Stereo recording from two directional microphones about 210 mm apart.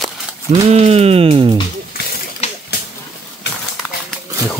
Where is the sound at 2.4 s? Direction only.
30° left (ahead or behind).